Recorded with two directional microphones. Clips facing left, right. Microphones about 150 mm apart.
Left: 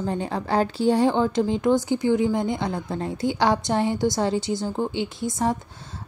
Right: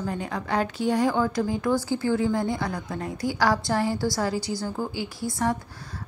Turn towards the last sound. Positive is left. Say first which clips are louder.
# left 2 dB
turn(degrees=20)  # may be behind; listen again after turning